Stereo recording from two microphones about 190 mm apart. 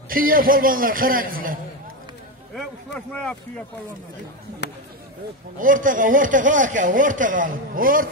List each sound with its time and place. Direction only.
0.1 s speech: 50° right (ahead or behind)
2.5 s speech: 5° left (ahead or behind)
4.6 s speech: 60° left (ahead or behind)
5.6 s speech: 45° right (ahead or behind)